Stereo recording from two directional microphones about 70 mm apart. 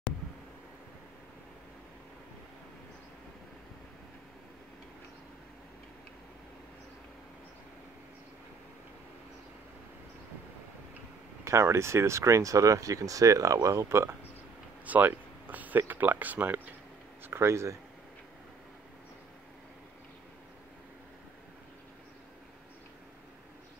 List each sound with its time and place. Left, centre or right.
11.4 s speech: right
14.9 s a sound: right
15.9 s speech: right